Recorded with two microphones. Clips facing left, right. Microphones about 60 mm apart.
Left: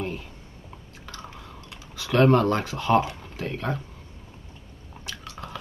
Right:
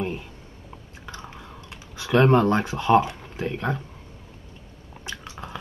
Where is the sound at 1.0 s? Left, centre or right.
Right.